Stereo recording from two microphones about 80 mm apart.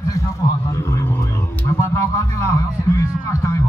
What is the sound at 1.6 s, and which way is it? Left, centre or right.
Speech, left.